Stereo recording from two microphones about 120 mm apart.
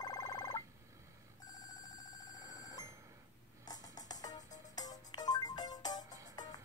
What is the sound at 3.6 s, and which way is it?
Music, 35° left (ahead or behind).